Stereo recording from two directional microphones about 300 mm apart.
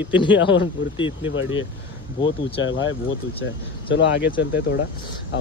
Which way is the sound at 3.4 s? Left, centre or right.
Left.